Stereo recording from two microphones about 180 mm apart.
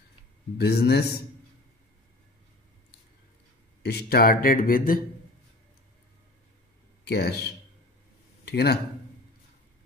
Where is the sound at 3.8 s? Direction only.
60° left (ahead or behind).